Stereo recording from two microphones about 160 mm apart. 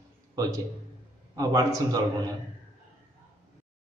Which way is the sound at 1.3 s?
20° right (ahead or behind).